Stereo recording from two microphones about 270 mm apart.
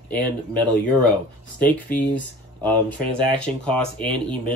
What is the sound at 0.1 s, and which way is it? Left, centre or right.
Speech, centre.